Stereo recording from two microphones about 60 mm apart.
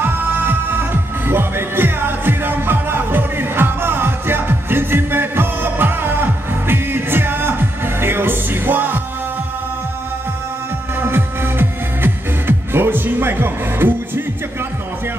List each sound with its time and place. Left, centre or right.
0.0 s music: right
11.0 s music: right